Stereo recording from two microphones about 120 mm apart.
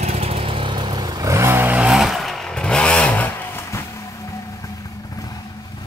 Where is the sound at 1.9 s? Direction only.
Centre (ahead or behind).